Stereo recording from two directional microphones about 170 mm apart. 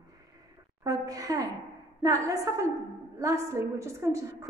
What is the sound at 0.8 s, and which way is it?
A woman's voice, 20° right (ahead or behind).